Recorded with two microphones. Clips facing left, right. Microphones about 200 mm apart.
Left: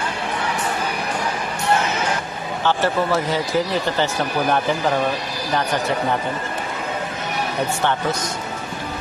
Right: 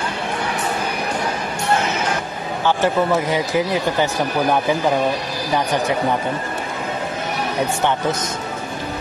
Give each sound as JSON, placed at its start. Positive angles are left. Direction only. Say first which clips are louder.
{"t": 2.6, "sound": "speech", "louder": "right 2 dB", "side_deg": -15}